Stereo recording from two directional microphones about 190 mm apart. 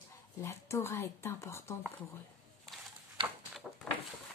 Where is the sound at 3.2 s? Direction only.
25° right (ahead or behind).